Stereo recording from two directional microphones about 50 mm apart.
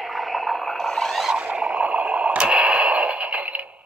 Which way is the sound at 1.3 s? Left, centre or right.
Centre.